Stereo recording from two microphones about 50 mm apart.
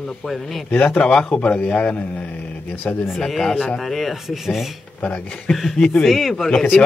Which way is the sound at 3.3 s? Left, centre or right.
Centre.